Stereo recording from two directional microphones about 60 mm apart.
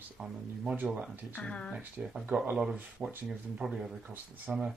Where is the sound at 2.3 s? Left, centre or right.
Centre.